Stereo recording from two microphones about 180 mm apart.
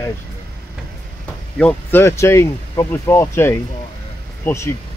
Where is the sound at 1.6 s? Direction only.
10° left (ahead or behind).